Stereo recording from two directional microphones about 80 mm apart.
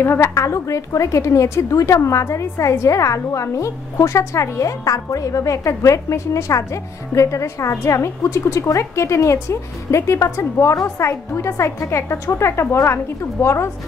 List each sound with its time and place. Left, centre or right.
0.0 s a woman's voice: left